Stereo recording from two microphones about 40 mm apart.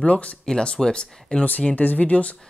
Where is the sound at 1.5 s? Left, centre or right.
Left.